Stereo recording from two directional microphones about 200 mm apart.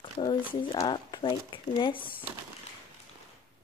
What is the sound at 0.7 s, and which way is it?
Speech, 25° left (ahead or behind).